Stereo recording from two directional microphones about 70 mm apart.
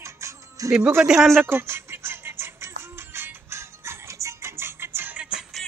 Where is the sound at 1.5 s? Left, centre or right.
Right.